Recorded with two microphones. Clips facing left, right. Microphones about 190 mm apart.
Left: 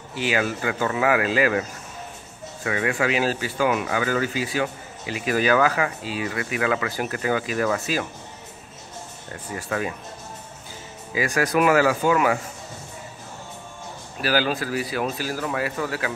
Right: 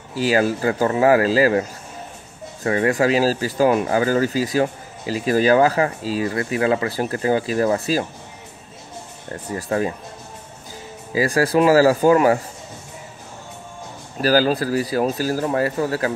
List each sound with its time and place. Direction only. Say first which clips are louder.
0.1 s speech: right 6 dB; 40° right (ahead or behind)
9.3 s speech: right 6 dB; 35° right (ahead or behind)
11.1 s speech: right 4 dB; 35° right (ahead or behind)
14.2 s speech: right 6 dB; 40° right (ahead or behind)